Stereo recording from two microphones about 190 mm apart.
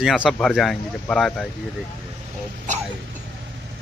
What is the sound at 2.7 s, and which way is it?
Speech, 40° right (ahead or behind).